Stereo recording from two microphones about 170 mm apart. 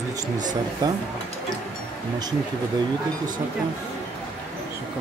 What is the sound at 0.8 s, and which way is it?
Speech, 25° right (ahead or behind).